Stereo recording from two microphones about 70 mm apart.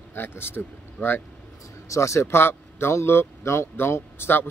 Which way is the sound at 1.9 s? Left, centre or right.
Left.